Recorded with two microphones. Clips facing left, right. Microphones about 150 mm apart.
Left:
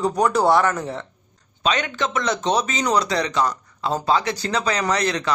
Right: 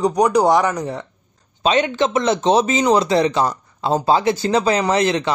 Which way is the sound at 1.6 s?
30° right (ahead or behind).